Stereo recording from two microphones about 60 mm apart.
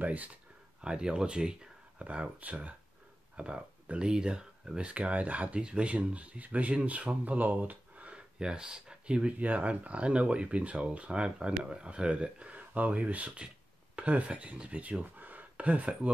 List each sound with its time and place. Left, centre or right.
0.0 s speech: right
8.4 s speech: centre